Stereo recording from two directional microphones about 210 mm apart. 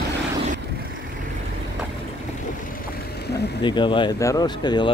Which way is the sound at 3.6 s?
20° left (ahead or behind).